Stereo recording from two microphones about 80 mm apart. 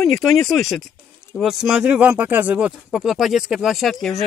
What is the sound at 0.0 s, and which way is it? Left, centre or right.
Speech, centre.